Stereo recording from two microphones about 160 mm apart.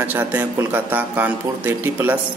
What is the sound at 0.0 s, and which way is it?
Speech, 10° right (ahead or behind).